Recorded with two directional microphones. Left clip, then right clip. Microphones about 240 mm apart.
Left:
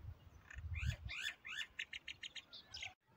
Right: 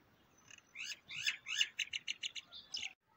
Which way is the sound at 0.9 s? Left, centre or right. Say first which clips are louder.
Right 6 dB; right.